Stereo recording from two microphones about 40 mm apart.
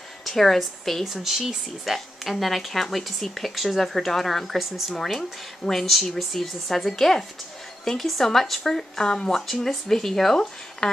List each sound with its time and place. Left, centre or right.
0.2 s a woman's voice: centre
1.0 s speech: centre
2.0 s speech: centre
4.9 s speech: centre
9.0 s speech: centre
9.3 s speech: centre